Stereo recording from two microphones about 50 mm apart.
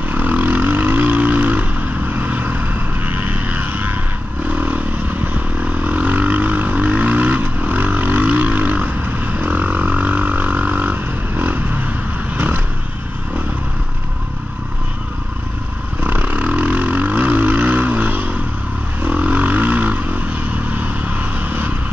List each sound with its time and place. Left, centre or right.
0.1 s vehicle: right
3.1 s a sound: right
4.5 s vehicle: right
16.0 s vehicle: right